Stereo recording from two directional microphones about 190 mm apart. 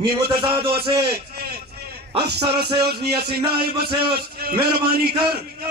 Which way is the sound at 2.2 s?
60° right (ahead or behind).